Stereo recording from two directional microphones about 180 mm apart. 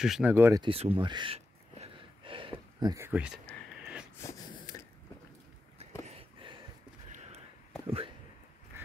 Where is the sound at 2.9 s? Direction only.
10° right (ahead or behind).